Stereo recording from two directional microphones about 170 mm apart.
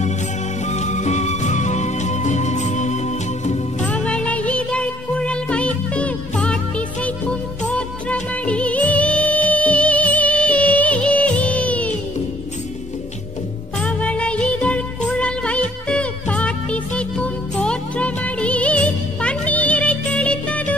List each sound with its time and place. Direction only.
0.7 s music: 45° left (ahead or behind)
3.8 s music: 5° left (ahead or behind)
13.7 s music: 5° left (ahead or behind)